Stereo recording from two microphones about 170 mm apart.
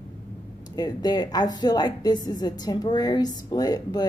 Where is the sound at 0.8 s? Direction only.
25° left (ahead or behind).